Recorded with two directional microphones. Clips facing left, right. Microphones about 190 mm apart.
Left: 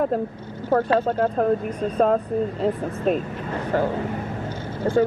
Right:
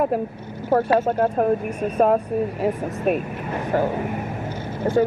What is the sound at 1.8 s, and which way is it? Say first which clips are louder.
Speech: right 3 dB; 15° right (ahead or behind).